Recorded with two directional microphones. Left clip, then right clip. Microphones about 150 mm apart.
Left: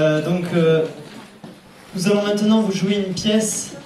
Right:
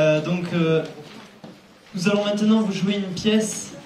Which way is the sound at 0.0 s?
40° left (ahead or behind).